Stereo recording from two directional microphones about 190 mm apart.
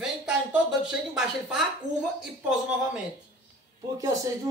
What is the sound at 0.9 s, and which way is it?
Speech, 5° right (ahead or behind).